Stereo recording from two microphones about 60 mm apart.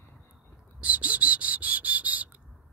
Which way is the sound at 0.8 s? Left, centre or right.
Right.